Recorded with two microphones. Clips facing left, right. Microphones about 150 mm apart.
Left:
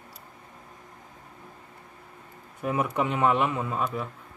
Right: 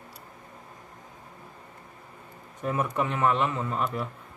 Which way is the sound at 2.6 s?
10° left (ahead or behind).